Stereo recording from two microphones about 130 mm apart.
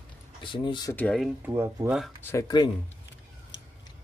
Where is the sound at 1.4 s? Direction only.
15° right (ahead or behind).